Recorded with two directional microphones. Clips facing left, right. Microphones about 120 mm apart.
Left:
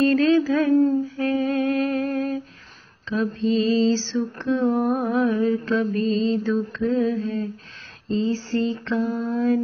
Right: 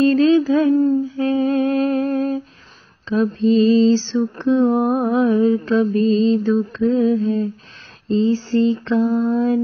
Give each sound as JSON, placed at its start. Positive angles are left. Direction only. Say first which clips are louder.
{"t": 0.0, "sound": "a sound", "louder": "right 4 dB", "side_deg": -25}
{"t": 0.7, "sound": "speech", "louder": "right 2 dB", "side_deg": 0}
{"t": 1.0, "sound": "humming", "louder": "right 4 dB", "side_deg": -25}
{"t": 3.1, "sound": "mantra", "louder": "right 6 dB", "side_deg": -30}
{"t": 4.8, "sound": "humming", "louder": "right 4 dB", "side_deg": -40}
{"t": 5.1, "sound": "mantra", "louder": "right 7 dB", "side_deg": -25}